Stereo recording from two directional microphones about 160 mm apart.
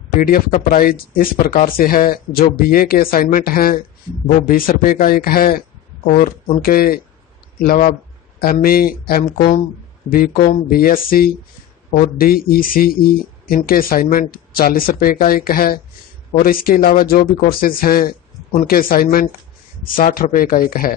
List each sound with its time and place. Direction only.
0.2 s speech: 65° left (ahead or behind)